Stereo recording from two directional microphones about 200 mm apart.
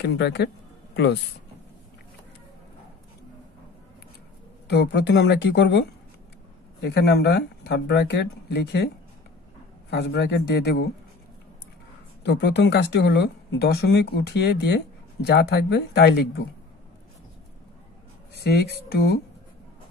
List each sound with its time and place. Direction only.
0.0 s speech: 60° left (ahead or behind)
4.6 s speech: 55° left (ahead or behind)
12.2 s speech: 55° left (ahead or behind)
18.3 s speech: 55° left (ahead or behind)